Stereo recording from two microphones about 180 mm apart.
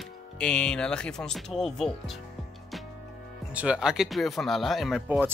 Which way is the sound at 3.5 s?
5° right (ahead or behind).